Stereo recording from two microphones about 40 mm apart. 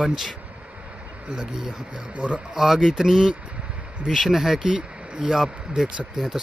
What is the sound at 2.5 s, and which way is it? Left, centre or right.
Speech, centre.